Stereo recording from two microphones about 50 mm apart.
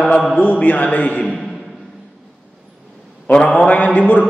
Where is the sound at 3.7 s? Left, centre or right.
Left.